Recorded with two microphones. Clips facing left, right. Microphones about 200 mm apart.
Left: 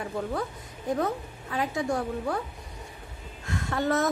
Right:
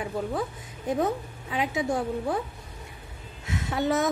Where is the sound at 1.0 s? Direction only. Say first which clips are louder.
Right 2 dB; 20° right (ahead or behind).